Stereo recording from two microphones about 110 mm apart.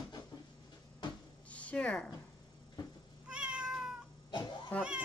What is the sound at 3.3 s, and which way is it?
Cat, 10° right (ahead or behind).